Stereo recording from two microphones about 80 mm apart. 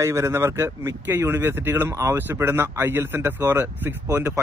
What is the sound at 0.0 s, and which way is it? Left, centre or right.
Speech, right.